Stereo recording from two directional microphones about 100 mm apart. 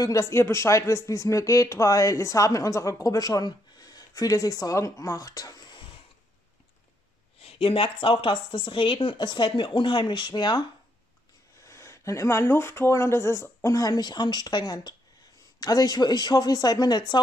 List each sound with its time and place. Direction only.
0.0 s speech: 30° left (ahead or behind)
7.4 s speech: 65° left (ahead or behind); by 10.6 s 45° left (ahead or behind)
11.6 s speech: 30° left (ahead or behind)